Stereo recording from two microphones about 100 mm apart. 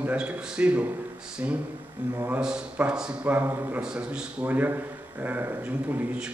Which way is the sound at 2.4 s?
10° right (ahead or behind).